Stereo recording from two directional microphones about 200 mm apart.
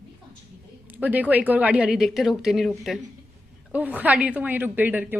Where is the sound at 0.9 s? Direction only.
10° right (ahead or behind).